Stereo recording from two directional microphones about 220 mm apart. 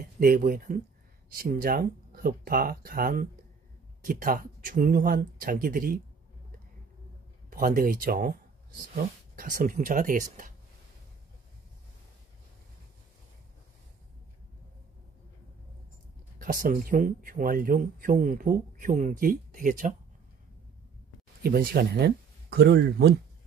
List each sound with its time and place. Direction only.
0.0 s speech: 40° right (ahead or behind)
7.4 s speech: 40° right (ahead or behind)
9.3 s speech: 40° right (ahead or behind)
16.3 s speech: 40° right (ahead or behind)
21.4 s speech: 40° right (ahead or behind)